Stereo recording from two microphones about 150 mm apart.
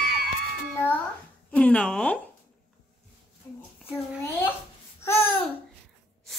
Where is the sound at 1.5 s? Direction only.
10° left (ahead or behind).